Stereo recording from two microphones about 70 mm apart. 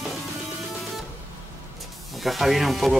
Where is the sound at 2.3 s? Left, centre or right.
Centre.